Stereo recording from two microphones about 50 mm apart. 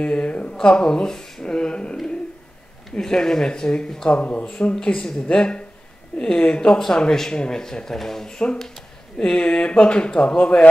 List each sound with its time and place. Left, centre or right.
0.0 s speech: left
3.0 s speech: centre
4.1 s speech: left; by 8.8 s centre
9.2 s speech: centre